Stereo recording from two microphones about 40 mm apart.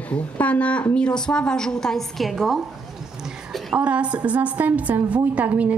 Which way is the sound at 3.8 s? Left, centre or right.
Right.